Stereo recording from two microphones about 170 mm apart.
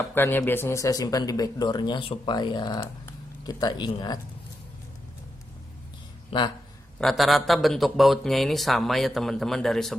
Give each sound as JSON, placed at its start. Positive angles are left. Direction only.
{"t": 0.1, "sound": "speech", "side_deg": 10}
{"t": 7.0, "sound": "a man's voice", "side_deg": 0}